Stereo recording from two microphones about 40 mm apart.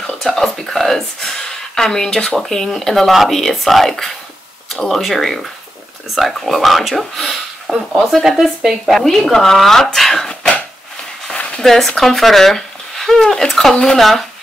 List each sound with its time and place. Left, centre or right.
0.2 s speech: centre
9.0 s speech: centre
11.6 s speech: centre